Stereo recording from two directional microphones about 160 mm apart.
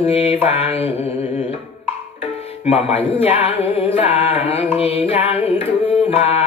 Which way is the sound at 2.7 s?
40° left (ahead or behind).